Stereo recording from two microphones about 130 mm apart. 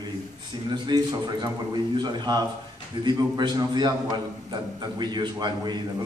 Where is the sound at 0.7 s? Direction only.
30° right (ahead or behind).